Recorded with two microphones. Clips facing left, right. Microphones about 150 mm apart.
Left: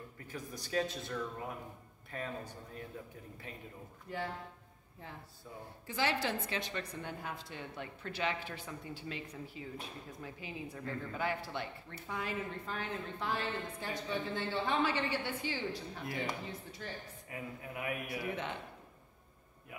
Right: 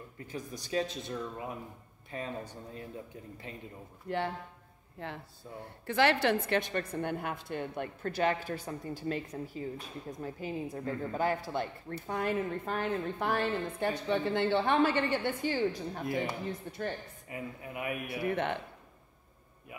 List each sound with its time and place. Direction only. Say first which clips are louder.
0.3 s a man's voice: right 3 dB; 20° right (ahead or behind)
4.1 s a woman's voice: right 6 dB; 70° right (ahead or behind)
17.3 s a man's voice: right 3 dB; 20° right (ahead or behind)
18.2 s a woman's voice: right 7 dB; 60° right (ahead or behind)